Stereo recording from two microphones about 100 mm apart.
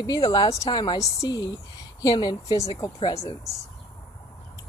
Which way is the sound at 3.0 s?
35° left (ahead or behind).